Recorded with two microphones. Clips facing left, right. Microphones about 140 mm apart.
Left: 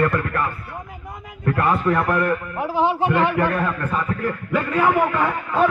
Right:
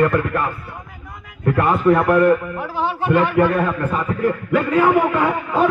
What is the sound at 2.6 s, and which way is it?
Speech, 25° left (ahead or behind).